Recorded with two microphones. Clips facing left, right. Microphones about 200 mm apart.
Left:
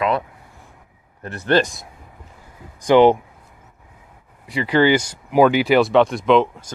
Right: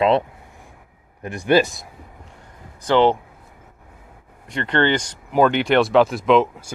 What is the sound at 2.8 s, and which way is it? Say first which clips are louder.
Speech: left 4 dB; 15° left (ahead or behind).